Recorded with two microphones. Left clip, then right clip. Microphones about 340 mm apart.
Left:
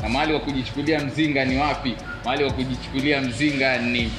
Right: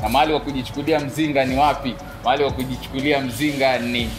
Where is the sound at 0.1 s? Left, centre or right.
Right.